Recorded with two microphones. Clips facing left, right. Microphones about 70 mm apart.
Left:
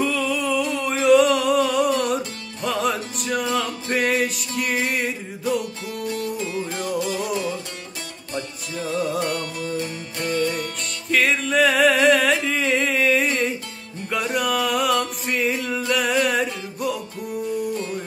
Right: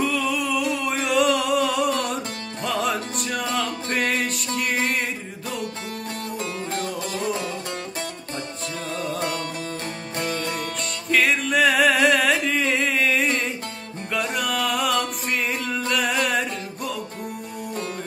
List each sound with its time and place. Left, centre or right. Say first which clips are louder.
0.0 s a sound: left 1 dB; centre
6.0 s music: left 5 dB; right
8.7 s music: left 6 dB; centre
9.2 s music: left 1 dB; right
11.1 s music: even; centre